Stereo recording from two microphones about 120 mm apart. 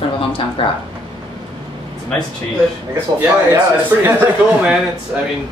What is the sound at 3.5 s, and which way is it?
Speech, 20° right (ahead or behind).